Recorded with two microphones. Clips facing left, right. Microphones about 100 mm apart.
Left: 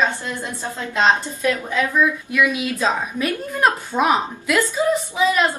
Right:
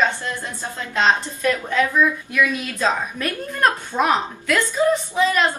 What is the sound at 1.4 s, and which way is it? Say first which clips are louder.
A woman's voice: right 1 dB; 10° left (ahead or behind).